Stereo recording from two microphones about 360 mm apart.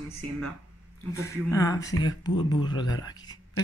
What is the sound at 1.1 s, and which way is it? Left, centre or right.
Speech, centre.